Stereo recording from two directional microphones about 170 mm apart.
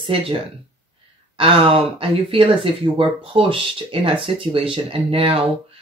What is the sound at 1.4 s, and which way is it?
Speech, 35° right (ahead or behind).